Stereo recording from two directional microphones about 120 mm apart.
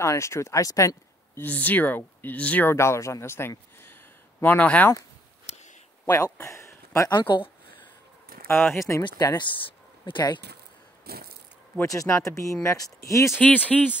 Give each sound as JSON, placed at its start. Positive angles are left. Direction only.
{"t": 0.0, "sound": "speech", "side_deg": 25}
{"t": 6.0, "sound": "speech", "side_deg": 30}
{"t": 6.3, "sound": "a sound", "side_deg": 25}
{"t": 7.1, "sound": "speech", "side_deg": 35}
{"t": 8.5, "sound": "speech", "side_deg": 20}
{"t": 9.0, "sound": "speech", "side_deg": 35}
{"t": 9.7, "sound": "a sound", "side_deg": 40}
{"t": 11.8, "sound": "speech", "side_deg": 25}
{"t": 13.4, "sound": "speech", "side_deg": 10}